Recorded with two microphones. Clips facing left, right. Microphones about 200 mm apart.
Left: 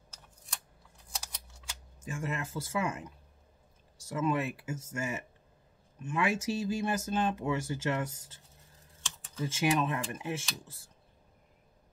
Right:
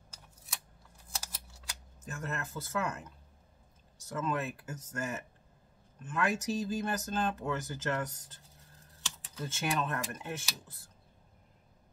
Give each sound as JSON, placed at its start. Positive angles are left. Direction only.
{"t": 1.1, "sound": "typing", "side_deg": -5}
{"t": 2.0, "sound": "speech", "side_deg": 10}
{"t": 9.0, "sound": "computer keyboard", "side_deg": -5}
{"t": 9.6, "sound": "speech", "side_deg": 10}